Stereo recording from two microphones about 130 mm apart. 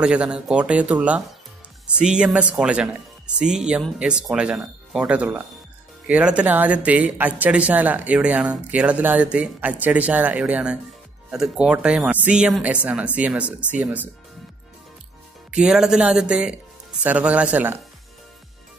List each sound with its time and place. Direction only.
0.0 s speech: 5° right (ahead or behind)
15.5 s speech: 5° right (ahead or behind)